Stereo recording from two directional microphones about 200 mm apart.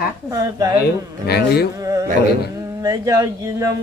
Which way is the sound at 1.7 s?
15° right (ahead or behind).